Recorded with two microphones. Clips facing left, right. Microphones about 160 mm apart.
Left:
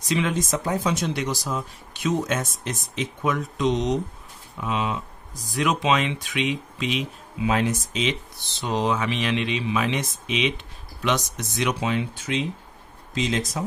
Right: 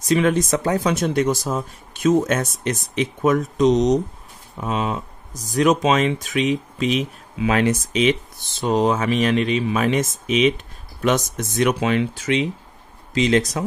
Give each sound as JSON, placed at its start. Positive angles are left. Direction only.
{"t": 0.1, "sound": "speech", "side_deg": -50}
{"t": 0.5, "sound": "speech", "side_deg": -85}
{"t": 0.9, "sound": "speech", "side_deg": -50}
{"t": 2.6, "sound": "speech", "side_deg": -75}
{"t": 3.2, "sound": "speech", "side_deg": -45}
{"t": 7.4, "sound": "speech", "side_deg": -80}
{"t": 11.8, "sound": "speech", "side_deg": -85}